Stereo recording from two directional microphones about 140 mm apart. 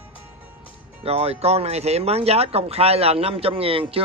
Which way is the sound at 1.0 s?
45° right (ahead or behind).